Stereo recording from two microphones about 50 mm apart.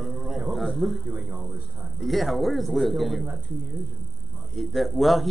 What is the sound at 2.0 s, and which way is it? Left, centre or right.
A man's voice, centre.